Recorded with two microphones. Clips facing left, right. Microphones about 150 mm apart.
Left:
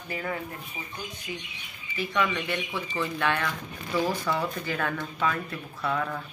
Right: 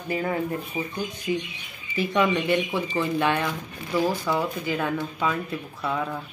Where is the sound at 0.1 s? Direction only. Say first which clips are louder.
Right 7 dB; 25° right (ahead or behind).